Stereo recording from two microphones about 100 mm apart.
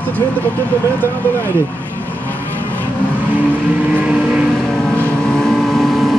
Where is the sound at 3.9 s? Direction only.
15° right (ahead or behind).